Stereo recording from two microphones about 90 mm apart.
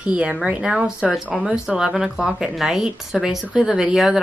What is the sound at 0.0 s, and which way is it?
Speech, 10° right (ahead or behind).